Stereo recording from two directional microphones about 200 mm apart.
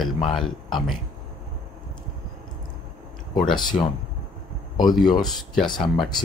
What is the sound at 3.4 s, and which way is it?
Speech, centre (ahead or behind).